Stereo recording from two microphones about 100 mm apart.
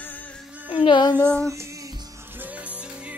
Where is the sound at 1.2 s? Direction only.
10° left (ahead or behind).